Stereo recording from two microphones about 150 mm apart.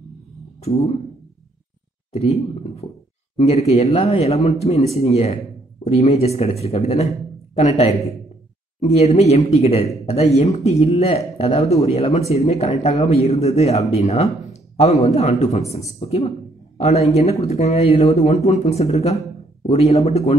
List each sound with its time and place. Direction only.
0.6 s speech: 45° left (ahead or behind)
2.1 s speech: 45° left (ahead or behind)